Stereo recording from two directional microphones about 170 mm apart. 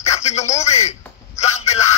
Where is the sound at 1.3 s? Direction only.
40° left (ahead or behind).